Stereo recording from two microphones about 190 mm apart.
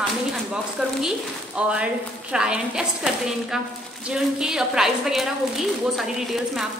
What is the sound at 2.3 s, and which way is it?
Speech, 5° right (ahead or behind).